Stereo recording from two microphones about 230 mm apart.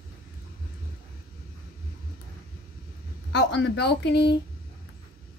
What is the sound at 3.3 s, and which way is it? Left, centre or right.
A woman's voice, left.